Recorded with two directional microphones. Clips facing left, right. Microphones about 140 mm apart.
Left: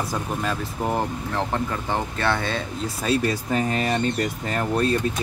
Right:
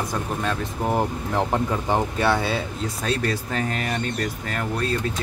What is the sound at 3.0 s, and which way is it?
Speech, 10° left (ahead or behind).